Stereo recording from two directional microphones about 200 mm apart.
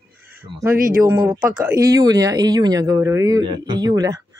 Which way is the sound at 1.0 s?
10° right (ahead or behind).